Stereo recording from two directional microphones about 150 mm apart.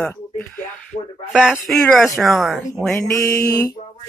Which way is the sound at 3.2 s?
20° left (ahead or behind).